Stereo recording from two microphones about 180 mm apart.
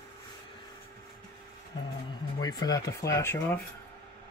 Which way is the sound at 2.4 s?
20° left (ahead or behind).